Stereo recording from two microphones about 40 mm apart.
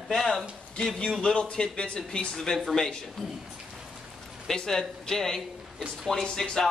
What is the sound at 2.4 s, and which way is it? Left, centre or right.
Speech, centre.